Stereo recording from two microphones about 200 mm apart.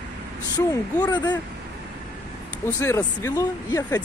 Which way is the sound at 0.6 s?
20° left (ahead or behind).